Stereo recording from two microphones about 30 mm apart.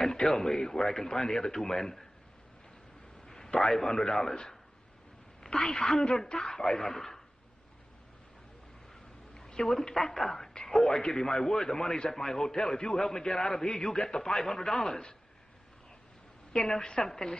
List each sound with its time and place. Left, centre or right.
0.0 s a man's voice: centre
3.3 s a man's voice: left
5.4 s a man's voice: left
9.8 s a man's voice: centre
16.5 s a man's voice: left